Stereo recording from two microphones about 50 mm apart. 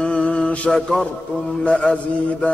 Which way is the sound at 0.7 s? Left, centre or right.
Centre.